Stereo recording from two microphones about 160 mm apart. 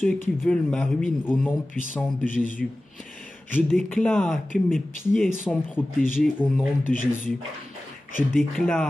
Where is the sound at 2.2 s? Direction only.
55° left (ahead or behind).